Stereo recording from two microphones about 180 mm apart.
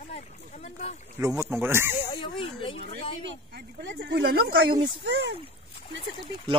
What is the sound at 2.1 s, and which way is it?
Speech, 30° left (ahead or behind).